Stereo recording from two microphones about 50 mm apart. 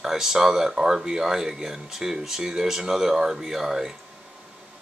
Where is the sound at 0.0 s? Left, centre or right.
Centre.